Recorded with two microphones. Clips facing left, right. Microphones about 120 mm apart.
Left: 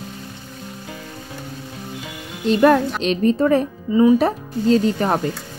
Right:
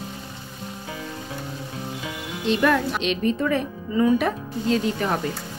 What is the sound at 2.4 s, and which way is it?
Speech, 40° left (ahead or behind).